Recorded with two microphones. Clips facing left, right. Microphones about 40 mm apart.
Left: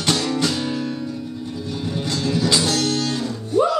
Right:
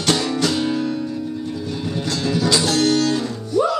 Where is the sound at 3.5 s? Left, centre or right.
Left.